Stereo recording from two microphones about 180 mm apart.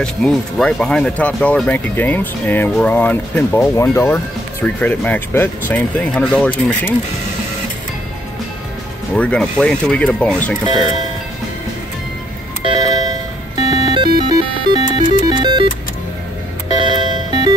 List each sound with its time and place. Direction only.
0.0 s speech: 5° left (ahead or behind)
9.1 s speech: 5° left (ahead or behind)
12.6 s music: 20° right (ahead or behind)
16.7 s music: 25° right (ahead or behind)